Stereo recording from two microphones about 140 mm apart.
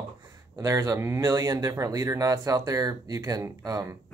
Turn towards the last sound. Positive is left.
turn(degrees=-25)  # may be behind; listen again after turning